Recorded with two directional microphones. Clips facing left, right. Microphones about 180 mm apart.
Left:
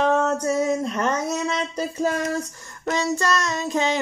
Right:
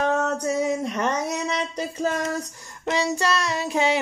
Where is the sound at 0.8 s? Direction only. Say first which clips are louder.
Left 1 dB; 15° right (ahead or behind).